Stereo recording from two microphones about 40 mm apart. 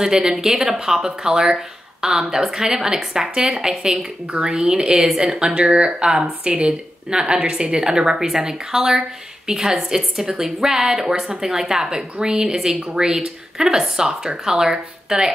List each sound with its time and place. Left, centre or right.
0.0 s speech: centre